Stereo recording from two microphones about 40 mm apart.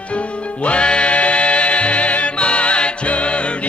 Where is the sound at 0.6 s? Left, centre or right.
Left.